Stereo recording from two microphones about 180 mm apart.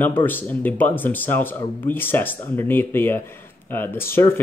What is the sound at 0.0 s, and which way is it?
Speech, 10° left (ahead or behind).